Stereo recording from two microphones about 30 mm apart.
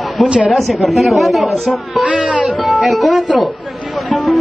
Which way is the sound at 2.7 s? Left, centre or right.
Centre.